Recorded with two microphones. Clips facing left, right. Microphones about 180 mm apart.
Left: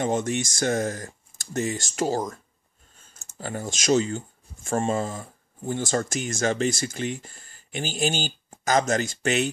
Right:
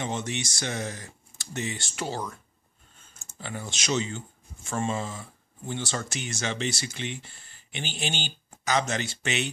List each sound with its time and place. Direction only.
0.0 s speech: 45° left (ahead or behind)